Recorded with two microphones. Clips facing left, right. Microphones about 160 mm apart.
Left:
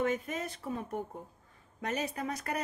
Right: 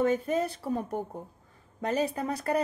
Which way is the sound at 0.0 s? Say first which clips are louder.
Right 6 dB; 35° right (ahead or behind).